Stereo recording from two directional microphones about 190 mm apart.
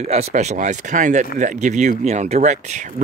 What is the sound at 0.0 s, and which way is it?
Speech, 35° right (ahead or behind).